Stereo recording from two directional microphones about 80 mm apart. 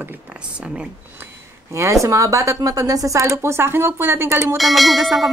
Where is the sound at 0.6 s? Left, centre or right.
Centre.